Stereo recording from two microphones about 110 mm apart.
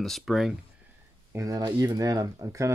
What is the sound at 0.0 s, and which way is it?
Speech, centre (ahead or behind).